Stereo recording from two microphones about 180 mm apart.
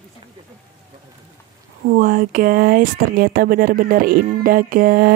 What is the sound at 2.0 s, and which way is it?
Speech, 50° right (ahead or behind).